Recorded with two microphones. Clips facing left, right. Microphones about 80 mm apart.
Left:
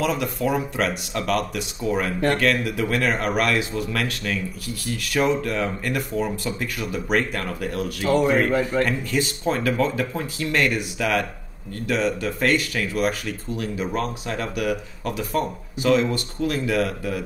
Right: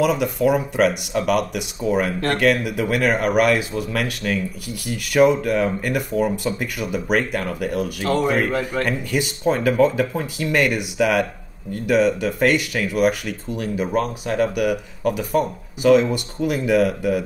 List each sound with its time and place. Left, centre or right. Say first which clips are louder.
0.0 s a man's voice: right 5 dB; centre
8.8 s speech: right 1 dB; centre